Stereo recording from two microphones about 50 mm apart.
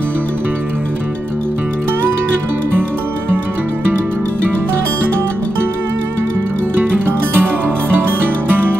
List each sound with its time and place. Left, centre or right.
6.8 s music: right